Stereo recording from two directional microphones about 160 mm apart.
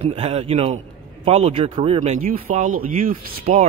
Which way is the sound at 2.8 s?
60° right (ahead or behind).